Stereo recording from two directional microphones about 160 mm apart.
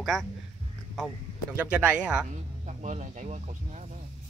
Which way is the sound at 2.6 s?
50° right (ahead or behind).